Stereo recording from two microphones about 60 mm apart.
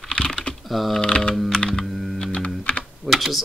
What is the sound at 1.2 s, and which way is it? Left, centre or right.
Computer keyboard, centre.